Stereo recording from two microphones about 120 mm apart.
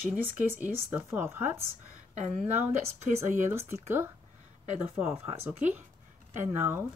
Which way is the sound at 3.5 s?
20° right (ahead or behind).